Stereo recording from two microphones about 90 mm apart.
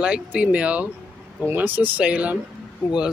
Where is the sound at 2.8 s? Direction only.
30° left (ahead or behind).